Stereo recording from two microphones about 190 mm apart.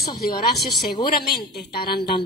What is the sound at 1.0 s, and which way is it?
Speech, 50° left (ahead or behind).